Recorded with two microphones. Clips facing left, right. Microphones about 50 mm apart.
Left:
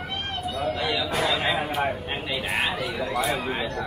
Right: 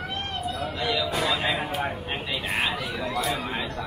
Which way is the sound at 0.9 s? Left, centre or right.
Left.